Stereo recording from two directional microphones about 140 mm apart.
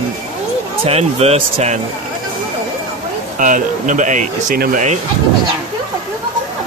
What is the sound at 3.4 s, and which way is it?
Speech, 65° right (ahead or behind).